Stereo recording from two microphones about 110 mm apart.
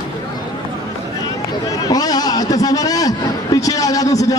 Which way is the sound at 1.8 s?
35° left (ahead or behind).